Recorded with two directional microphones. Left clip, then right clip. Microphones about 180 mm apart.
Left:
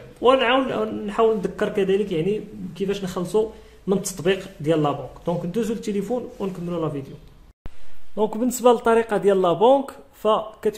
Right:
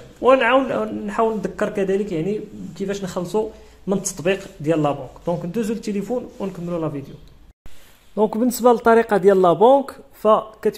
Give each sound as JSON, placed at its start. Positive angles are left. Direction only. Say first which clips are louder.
{"t": 0.2, "sound": "a man's voice", "louder": "right 3 dB", "side_deg": -10}
{"t": 8.2, "sound": "speech", "louder": "right 3 dB", "side_deg": -25}